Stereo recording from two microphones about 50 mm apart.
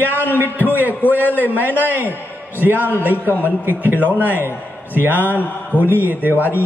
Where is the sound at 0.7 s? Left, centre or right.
Right.